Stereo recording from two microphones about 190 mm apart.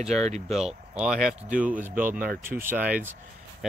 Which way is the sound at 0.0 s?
35° right (ahead or behind).